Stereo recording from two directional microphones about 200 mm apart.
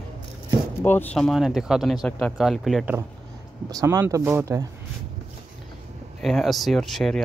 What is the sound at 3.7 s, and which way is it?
Speech, 20° right (ahead or behind).